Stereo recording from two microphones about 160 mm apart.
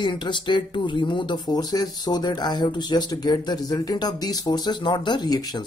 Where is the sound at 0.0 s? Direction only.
30° left (ahead or behind).